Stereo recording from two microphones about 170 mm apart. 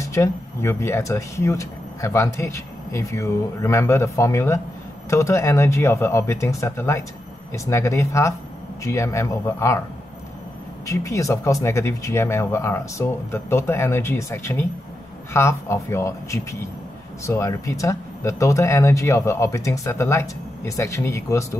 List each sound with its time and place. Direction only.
0.0 s speech: 15° left (ahead or behind)
10.9 s speech: 20° left (ahead or behind)